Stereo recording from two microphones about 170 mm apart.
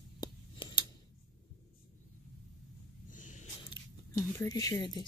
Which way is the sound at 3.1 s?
50° left (ahead or behind).